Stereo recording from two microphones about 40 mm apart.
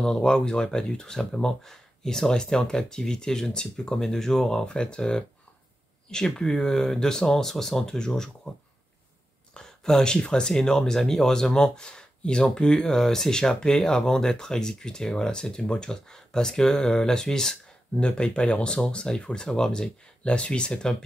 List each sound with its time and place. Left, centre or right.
0.0 s speech: centre
17.9 s speech: left
20.2 s speech: left